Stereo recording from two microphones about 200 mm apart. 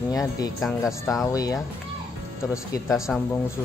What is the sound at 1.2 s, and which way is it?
Speech, 20° left (ahead or behind).